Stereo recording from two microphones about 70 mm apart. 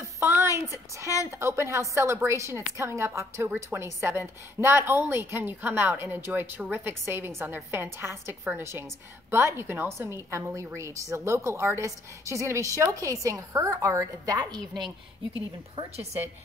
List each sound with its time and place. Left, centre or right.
0.3 s a woman's voice: right